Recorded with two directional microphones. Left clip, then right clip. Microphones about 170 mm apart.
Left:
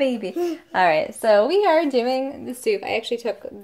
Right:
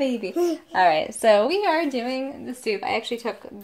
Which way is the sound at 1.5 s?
25° left (ahead or behind).